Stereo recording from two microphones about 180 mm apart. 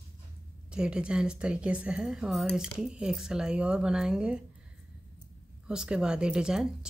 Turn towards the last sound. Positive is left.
turn(degrees=-5)  # may be behind; listen again after turning